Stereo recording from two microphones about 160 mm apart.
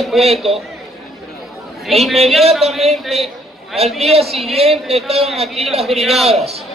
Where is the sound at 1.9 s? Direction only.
Centre (ahead or behind).